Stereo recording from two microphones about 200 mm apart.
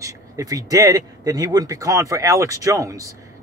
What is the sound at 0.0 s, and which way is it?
Speech, 15° right (ahead or behind).